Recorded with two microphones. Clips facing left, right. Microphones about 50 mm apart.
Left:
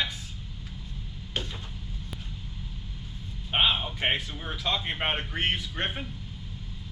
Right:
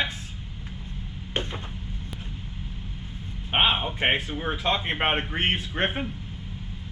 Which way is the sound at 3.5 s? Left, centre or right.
Right.